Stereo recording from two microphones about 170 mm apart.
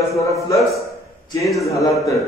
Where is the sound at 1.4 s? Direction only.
Centre (ahead or behind).